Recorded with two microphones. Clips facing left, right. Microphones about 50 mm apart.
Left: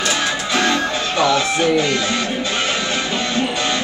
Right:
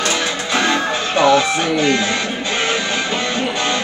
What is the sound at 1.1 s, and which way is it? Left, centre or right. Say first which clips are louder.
Speech: right 4 dB; right.